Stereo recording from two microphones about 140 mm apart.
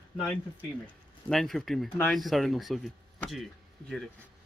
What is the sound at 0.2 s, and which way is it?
A man's voice, 10° left (ahead or behind).